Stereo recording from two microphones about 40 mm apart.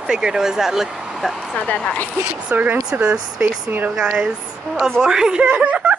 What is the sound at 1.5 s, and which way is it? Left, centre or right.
Speech, left.